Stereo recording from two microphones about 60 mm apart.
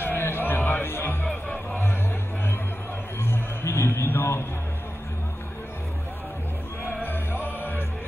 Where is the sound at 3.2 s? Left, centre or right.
Left.